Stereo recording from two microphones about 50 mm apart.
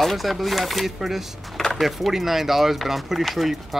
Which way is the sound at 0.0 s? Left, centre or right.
Centre.